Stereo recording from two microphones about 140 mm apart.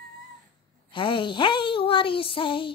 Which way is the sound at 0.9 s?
35° left (ahead or behind).